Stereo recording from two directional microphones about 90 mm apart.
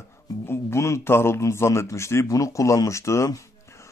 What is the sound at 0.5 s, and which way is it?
A man's voice, 30° left (ahead or behind).